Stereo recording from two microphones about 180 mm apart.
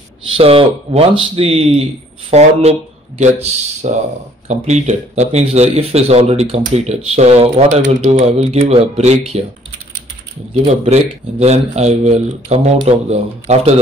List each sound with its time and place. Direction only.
0.4 s speech: 35° right (ahead or behind)
10.6 s speech: 35° right (ahead or behind)